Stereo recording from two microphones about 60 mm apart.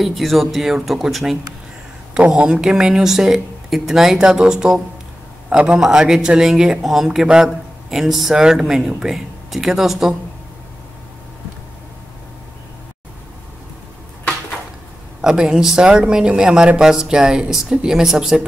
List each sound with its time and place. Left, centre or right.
0.0 s speech: centre
2.1 s a man's voice: centre
15.2 s speech: centre